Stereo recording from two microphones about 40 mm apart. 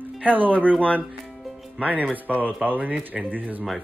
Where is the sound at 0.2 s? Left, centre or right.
Right.